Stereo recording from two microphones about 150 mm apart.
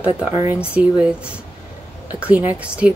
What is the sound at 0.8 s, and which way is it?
Speech, 10° right (ahead or behind).